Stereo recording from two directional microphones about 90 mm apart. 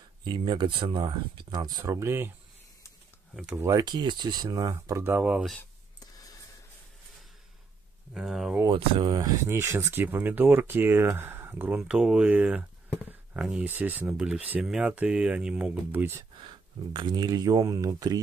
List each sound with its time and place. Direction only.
0.2 s speech: 60° right (ahead or behind)
2.0 s speech: 25° right (ahead or behind)
3.7 s speech: 55° right (ahead or behind)
4.7 s speech: 30° right (ahead or behind)
8.1 s speech: 5° right (ahead or behind)
8.7 s speech: 70° right (ahead or behind)
9.5 s speech: 30° right (ahead or behind)
11.9 s speech: 5° right (ahead or behind)
13.7 s speech: 20° right (ahead or behind)
15.9 s speech: 25° right (ahead or behind)
16.9 s speech: 55° right (ahead or behind)